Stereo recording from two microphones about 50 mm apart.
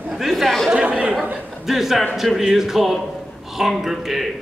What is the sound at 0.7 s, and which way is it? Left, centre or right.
Chatter, right.